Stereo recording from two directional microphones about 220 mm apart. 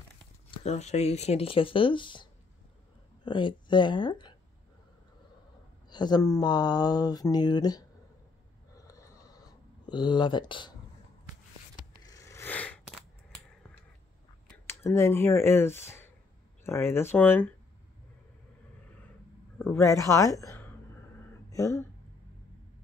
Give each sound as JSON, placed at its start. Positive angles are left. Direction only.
{"t": 0.7, "sound": "speech", "side_deg": 30}
{"t": 3.3, "sound": "speech", "side_deg": 20}
{"t": 5.9, "sound": "speech", "side_deg": 20}
{"t": 8.7, "sound": "a sound", "side_deg": 15}
{"t": 9.8, "sound": "speech", "side_deg": 20}
{"t": 12.0, "sound": "a sound", "side_deg": 15}
{"t": 14.7, "sound": "speech", "side_deg": 10}
{"t": 19.6, "sound": "speech", "side_deg": 10}